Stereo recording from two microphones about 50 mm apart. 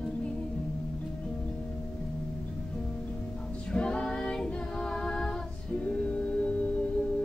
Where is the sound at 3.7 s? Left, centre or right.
Left.